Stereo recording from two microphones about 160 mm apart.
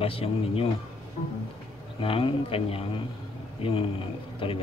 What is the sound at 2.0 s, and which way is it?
Speech, 35° left (ahead or behind).